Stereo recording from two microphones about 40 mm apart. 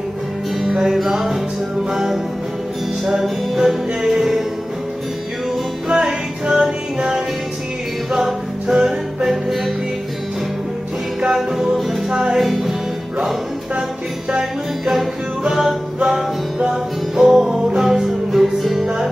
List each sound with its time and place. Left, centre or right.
0.6 s music: centre
5.9 s music: centre
11.1 s music: centre
12.4 s music: centre
17.2 s music: centre